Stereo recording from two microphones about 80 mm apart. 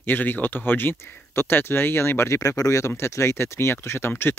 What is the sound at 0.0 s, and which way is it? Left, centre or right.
Speech, left.